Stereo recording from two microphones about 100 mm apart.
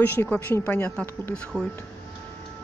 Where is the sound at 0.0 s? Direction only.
20° left (ahead or behind).